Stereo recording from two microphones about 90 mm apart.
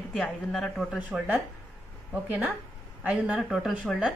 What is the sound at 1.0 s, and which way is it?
A woman's voice, 20° right (ahead or behind).